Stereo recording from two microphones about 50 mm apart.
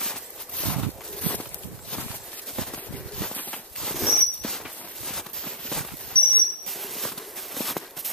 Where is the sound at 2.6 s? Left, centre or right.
Centre.